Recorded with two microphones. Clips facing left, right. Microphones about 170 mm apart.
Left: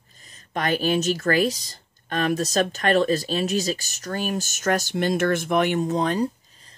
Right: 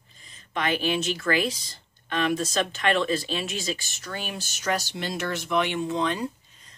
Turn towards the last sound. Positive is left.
turn(degrees=40)  # may be behind; listen again after turning